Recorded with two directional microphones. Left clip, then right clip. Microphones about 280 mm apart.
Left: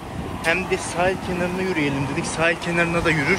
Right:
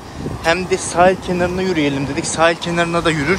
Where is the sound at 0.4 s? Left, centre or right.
Centre.